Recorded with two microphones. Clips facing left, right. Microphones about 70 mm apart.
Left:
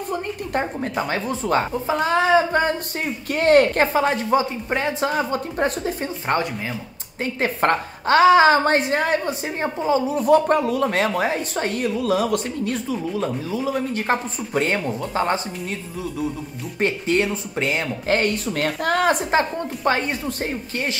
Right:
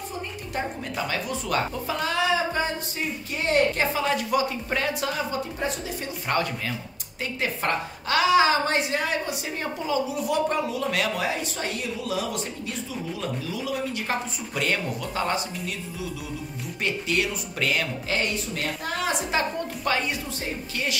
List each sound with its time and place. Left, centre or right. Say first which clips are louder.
0.1 s a woman's voice: left 10 dB; left
5.1 s speech: left 6 dB; left
7.3 s a woman's voice: left 7 dB; left
10.9 s a woman's voice: left 5 dB; left
16.8 s a woman's voice: left 6 dB; left
18.0 s speech: left 7 dB; left
19.3 s a woman's voice: left 5 dB; left